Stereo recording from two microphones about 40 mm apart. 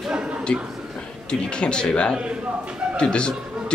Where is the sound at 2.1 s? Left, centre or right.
Right.